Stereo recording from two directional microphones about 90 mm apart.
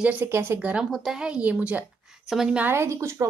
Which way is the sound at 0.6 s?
15° right (ahead or behind).